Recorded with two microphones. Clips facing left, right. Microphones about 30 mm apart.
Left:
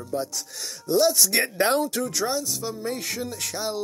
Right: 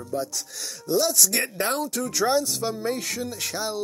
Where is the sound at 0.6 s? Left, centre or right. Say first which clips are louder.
Left 3 dB; centre.